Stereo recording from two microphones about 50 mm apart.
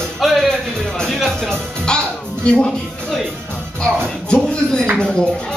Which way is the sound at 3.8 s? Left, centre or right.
Left.